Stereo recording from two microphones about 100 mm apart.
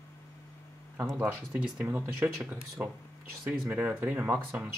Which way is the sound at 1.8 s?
20° right (ahead or behind).